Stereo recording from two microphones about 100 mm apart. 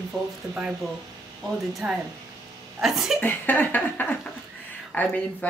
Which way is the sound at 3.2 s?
20° left (ahead or behind).